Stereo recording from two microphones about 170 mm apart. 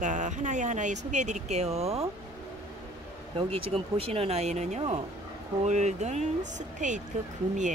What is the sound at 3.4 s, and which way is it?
Speech, 35° right (ahead or behind).